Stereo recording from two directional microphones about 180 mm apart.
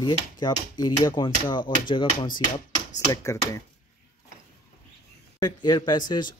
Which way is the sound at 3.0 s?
15° left (ahead or behind).